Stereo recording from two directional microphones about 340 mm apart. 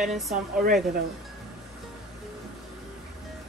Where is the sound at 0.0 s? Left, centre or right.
Centre.